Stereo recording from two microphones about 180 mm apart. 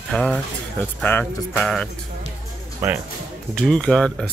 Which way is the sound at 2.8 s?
15° right (ahead or behind).